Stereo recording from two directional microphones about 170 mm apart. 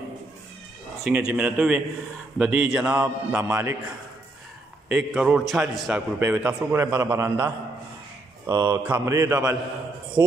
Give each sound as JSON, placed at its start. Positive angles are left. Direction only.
{"t": 1.0, "sound": "a man's voice", "side_deg": -10}
{"t": 4.8, "sound": "a man's voice", "side_deg": -5}